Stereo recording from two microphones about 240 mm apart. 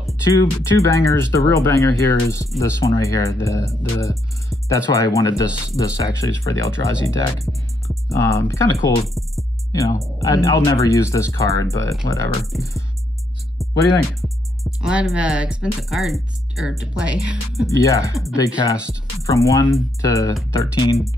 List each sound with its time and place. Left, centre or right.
0.3 s speech: centre
9.0 s speech: centre
9.7 s speech: centre
14.2 s speech: centre
17.6 s speech: centre